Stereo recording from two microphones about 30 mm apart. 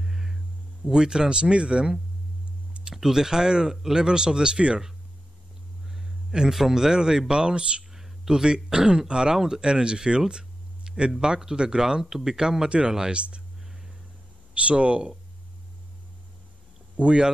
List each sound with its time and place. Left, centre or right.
0.0 s hum: centre
0.8 s speech: right
2.9 s speech: centre; by 4.8 s right
6.5 s speech: centre
12.6 s speech: right
14.5 s speech: right
17.0 s speech: right